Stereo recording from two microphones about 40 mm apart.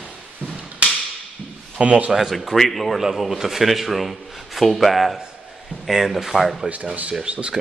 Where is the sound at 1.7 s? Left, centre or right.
Right.